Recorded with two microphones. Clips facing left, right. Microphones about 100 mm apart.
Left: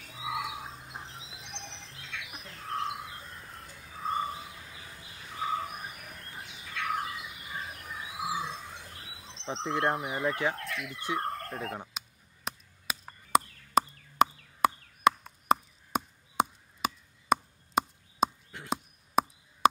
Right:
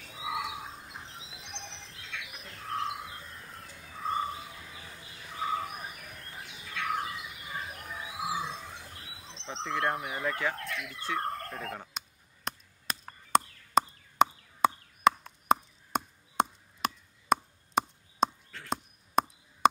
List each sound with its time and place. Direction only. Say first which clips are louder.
0.0 s a sound: even; centre (ahead or behind)
5.3 s bird: even; centre (ahead or behind)
9.8 s speech: left 3 dB; centre (ahead or behind)
12.4 s chop: even; 5° left (ahead or behind)